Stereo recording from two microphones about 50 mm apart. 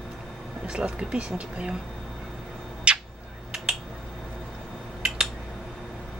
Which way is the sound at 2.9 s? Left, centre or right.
Right.